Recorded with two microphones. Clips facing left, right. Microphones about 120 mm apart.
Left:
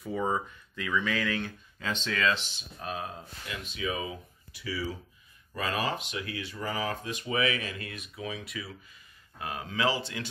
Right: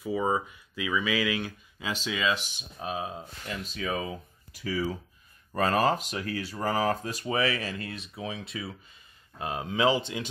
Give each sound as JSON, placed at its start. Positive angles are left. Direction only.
{"t": 0.0, "sound": "speech", "side_deg": -5}
{"t": 3.4, "sound": "speech", "side_deg": -40}